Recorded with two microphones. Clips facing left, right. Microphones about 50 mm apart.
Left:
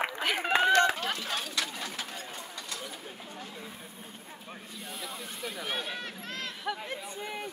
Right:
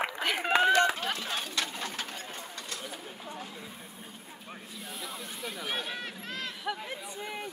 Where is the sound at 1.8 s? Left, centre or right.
Right.